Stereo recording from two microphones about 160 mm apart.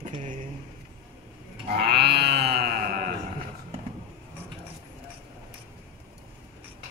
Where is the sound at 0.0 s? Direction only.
50° right (ahead or behind).